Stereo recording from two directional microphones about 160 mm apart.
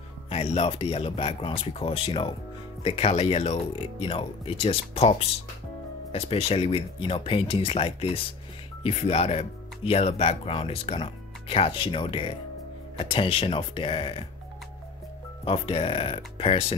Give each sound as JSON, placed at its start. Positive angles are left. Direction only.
{"t": 0.3, "sound": "speech", "side_deg": 40}
{"t": 15.4, "sound": "speech", "side_deg": 35}